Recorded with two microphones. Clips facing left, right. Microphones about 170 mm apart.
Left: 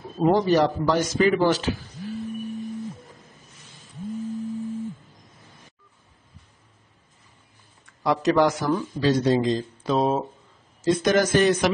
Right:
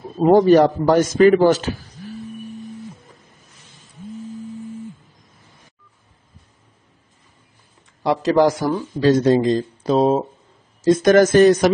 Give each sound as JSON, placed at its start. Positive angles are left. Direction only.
{"t": 0.2, "sound": "a man's voice", "side_deg": -50}
{"t": 8.0, "sound": "speech", "side_deg": -30}
{"t": 9.0, "sound": "a man's voice", "side_deg": -50}
{"t": 9.9, "sound": "speech", "side_deg": -35}
{"t": 10.8, "sound": "a man's voice", "side_deg": -45}